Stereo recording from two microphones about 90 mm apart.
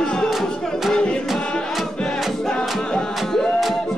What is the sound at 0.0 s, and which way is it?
Music, 5° left (ahead or behind).